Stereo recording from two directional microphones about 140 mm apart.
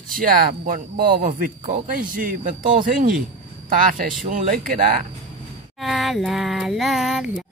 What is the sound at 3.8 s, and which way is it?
Speech, 90° right.